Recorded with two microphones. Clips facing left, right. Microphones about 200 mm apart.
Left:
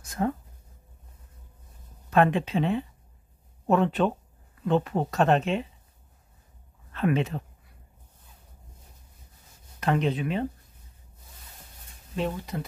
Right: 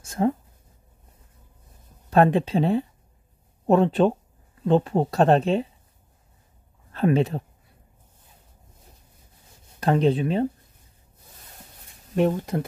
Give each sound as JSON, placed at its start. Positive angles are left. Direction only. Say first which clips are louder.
{"t": 0.0, "sound": "a sound", "louder": "right 5 dB", "side_deg": -25}
{"t": 2.0, "sound": "speech", "louder": "right 4 dB", "side_deg": -35}
{"t": 6.9, "sound": "speech", "louder": "right 5 dB", "side_deg": -35}
{"t": 9.8, "sound": "speech", "louder": "right 5 dB", "side_deg": -35}
{"t": 12.2, "sound": "speech", "louder": "right 8 dB", "side_deg": -50}